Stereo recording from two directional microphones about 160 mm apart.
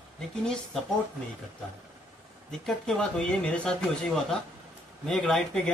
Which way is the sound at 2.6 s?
5° left (ahead or behind).